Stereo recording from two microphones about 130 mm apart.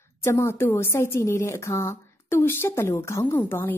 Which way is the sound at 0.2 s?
20° left (ahead or behind).